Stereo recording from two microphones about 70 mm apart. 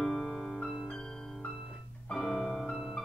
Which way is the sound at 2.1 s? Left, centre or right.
Centre.